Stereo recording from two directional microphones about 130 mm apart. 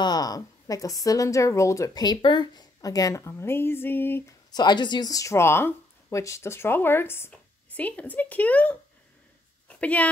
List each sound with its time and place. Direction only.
0.0 s speech: 30° left (ahead or behind)
4.5 s speech: 35° left (ahead or behind); by 8.7 s 10° left (ahead or behind)
9.7 s a sound: 10° left (ahead or behind)